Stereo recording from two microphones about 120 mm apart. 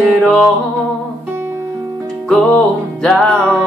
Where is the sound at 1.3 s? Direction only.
20° right (ahead or behind).